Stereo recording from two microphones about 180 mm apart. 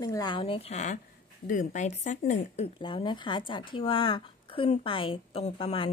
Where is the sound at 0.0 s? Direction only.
20° left (ahead or behind).